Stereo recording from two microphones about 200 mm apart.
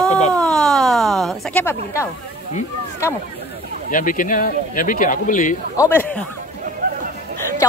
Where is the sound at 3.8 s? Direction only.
45° left (ahead or behind).